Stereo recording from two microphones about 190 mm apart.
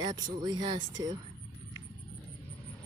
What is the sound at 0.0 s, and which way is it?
Speech, 20° right (ahead or behind).